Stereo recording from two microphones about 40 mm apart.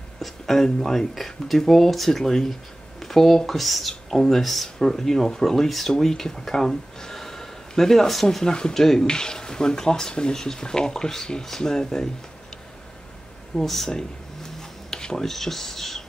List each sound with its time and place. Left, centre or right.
0.2 s speech: centre
13.6 s speech: centre